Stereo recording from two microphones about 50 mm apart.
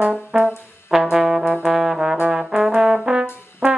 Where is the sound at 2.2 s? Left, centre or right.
Centre.